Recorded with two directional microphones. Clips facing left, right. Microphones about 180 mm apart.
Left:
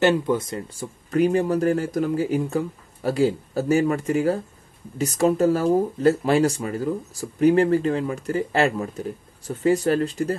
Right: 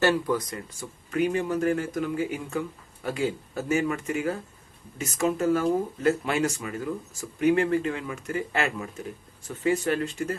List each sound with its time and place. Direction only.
0.0 s speech: 25° left (ahead or behind)